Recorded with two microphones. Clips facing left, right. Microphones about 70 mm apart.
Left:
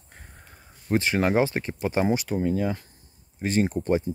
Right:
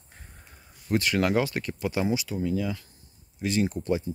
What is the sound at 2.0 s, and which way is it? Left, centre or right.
Speech, left.